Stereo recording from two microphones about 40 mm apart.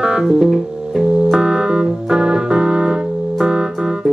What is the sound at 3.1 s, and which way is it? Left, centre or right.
Music, centre.